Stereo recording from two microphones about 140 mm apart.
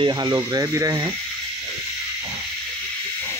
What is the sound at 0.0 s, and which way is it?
Speech, 30° right (ahead or behind).